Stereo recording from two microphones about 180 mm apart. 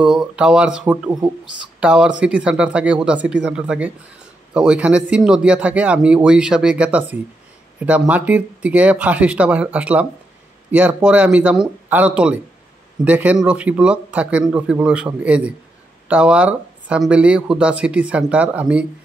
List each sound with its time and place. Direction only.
0.0 s speech: 5° right (ahead or behind)